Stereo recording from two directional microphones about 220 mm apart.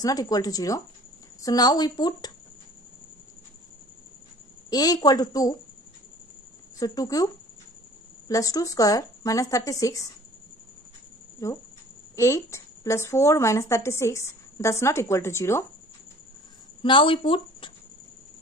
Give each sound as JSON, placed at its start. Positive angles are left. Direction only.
{"t": 0.0, "sound": "a woman's voice", "side_deg": 15}
{"t": 4.6, "sound": "a woman's voice", "side_deg": 15}
{"t": 6.8, "sound": "a woman's voice", "side_deg": 15}
{"t": 8.3, "sound": "a woman's voice", "side_deg": 15}
{"t": 11.4, "sound": "a woman's voice", "side_deg": 15}
{"t": 16.8, "sound": "speech", "side_deg": 20}